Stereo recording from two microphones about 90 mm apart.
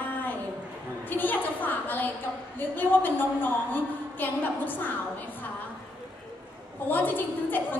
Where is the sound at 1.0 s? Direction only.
20° left (ahead or behind).